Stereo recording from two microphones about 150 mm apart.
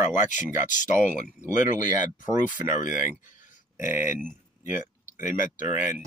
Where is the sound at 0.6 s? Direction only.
60° left (ahead or behind).